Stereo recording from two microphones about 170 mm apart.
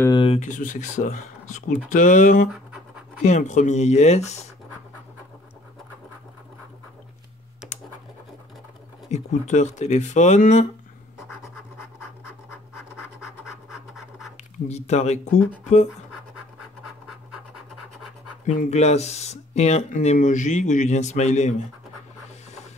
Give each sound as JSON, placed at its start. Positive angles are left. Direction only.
{"t": 0.2, "sound": "speech", "side_deg": 40}
{"t": 9.1, "sound": "speech", "side_deg": 45}
{"t": 13.2, "sound": "scratch", "side_deg": 0}
{"t": 14.3, "sound": "speech", "side_deg": 40}
{"t": 18.4, "sound": "speech", "side_deg": 45}